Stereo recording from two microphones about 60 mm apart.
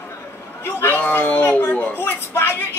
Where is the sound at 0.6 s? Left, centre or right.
Left.